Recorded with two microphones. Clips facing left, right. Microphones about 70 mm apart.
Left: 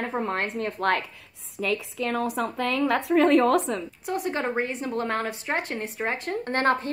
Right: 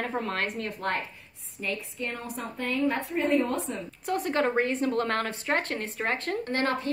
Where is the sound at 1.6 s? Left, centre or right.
Left.